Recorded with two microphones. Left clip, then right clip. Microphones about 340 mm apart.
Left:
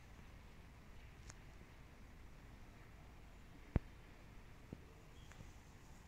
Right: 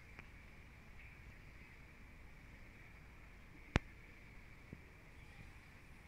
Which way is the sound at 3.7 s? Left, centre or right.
Right.